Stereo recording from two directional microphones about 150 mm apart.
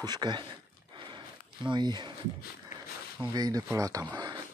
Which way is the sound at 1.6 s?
30° right (ahead or behind).